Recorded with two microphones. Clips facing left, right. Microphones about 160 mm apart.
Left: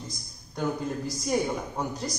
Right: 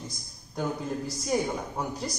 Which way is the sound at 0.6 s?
5° right (ahead or behind).